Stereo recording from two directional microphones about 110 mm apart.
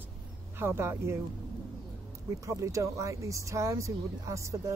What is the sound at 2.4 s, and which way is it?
Speech, 30° right (ahead or behind).